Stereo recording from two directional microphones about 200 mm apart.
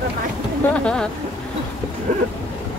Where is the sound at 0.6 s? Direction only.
5° left (ahead or behind).